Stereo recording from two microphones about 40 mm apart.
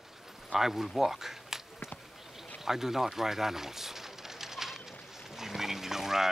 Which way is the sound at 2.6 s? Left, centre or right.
Centre.